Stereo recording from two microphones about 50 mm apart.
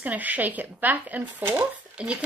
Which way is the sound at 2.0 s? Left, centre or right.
Right.